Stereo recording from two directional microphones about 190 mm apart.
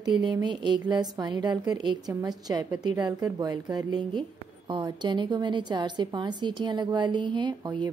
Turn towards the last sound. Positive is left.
turn(degrees=-20)  # may be behind; listen again after turning